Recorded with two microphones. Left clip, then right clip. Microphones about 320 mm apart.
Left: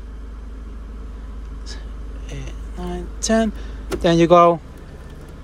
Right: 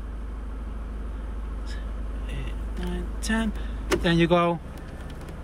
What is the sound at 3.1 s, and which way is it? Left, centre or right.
Speech, left.